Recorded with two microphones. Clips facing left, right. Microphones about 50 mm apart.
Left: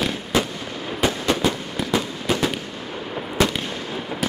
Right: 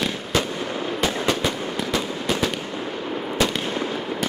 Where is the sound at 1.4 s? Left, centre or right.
Centre.